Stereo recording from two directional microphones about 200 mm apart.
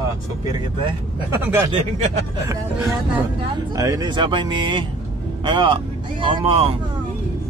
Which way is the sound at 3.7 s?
20° right (ahead or behind).